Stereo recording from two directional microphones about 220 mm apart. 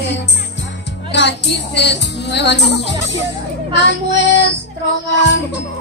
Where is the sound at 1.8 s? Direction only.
50° left (ahead or behind).